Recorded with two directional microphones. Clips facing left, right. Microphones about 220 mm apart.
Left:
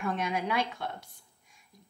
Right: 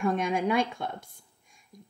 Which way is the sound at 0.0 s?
50° right (ahead or behind).